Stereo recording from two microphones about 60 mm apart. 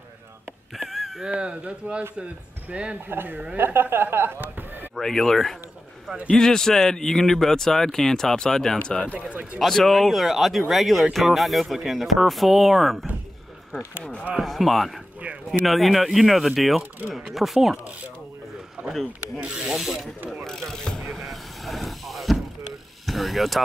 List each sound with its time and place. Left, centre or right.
0.7 s a sound: centre
1.2 s speech: centre
3.1 s speech: right
4.4 s chop: right
4.9 s speech: centre
9.3 s speech: right
9.6 s speech: centre
13.7 s speech: centre
18.8 s a sound: right
19.3 s pulleys: centre
19.7 s speech: centre
20.4 s speech: centre
21.0 s vehicle: centre
23.0 s speech: centre